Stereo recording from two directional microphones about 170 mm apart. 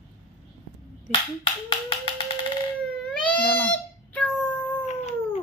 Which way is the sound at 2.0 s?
30° left (ahead or behind).